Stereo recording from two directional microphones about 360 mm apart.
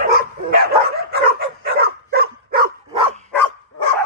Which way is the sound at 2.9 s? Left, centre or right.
Centre.